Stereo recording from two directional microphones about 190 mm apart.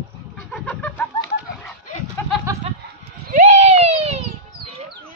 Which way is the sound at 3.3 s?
40° right (ahead or behind).